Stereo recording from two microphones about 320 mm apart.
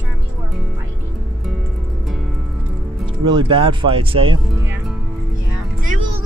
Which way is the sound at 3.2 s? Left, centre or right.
Centre.